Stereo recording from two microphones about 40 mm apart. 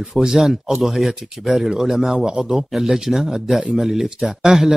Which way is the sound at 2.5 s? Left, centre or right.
Centre.